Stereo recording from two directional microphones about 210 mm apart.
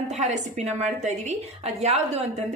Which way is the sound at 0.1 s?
35° right (ahead or behind).